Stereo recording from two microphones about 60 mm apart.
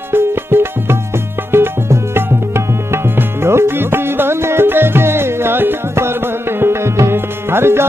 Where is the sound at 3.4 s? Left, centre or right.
Right.